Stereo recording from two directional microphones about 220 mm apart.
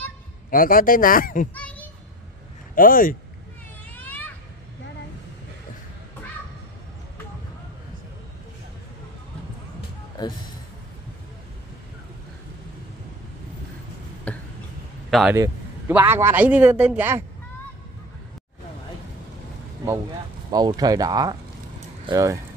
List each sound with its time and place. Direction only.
0.5 s speech: 40° left (ahead or behind)
1.5 s children playing: 5° left (ahead or behind)
2.7 s speech: 40° left (ahead or behind)
3.9 s a sound: 10° left (ahead or behind)
14.3 s a sound: 5° left (ahead or behind)
15.0 s speech: centre (ahead or behind)
15.3 s a man's voice: 10° right (ahead or behind)
20.5 s a man's voice: 15° right (ahead or behind)
21.7 s a sound: 20° right (ahead or behind)